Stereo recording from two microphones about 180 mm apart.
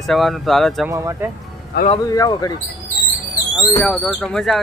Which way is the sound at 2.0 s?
20° left (ahead or behind).